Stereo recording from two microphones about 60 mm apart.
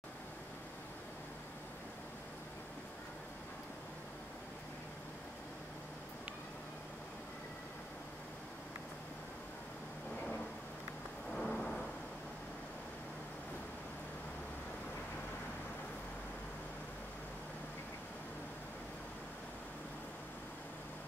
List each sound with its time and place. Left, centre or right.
11.3 s thunder: centre